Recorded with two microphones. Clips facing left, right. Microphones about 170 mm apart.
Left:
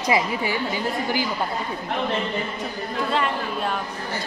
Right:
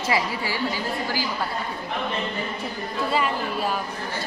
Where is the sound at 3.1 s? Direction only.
5° right (ahead or behind).